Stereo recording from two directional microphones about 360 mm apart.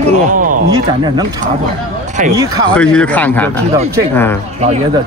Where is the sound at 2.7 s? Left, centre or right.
Centre.